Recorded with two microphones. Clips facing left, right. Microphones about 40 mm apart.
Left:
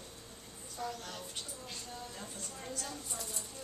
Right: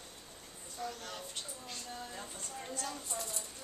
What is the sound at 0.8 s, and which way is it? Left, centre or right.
Speech, centre.